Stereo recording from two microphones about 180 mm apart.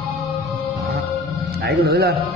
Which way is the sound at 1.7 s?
60° right (ahead or behind).